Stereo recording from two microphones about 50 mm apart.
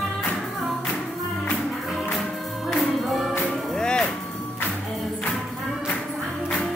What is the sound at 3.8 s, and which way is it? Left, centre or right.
Music, centre.